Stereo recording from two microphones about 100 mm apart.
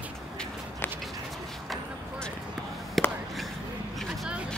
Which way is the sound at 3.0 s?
Centre (ahead or behind).